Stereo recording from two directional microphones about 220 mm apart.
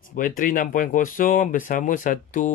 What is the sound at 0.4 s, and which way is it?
Speech, 40° left (ahead or behind).